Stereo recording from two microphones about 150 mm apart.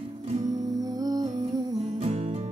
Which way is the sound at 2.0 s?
45° right (ahead or behind).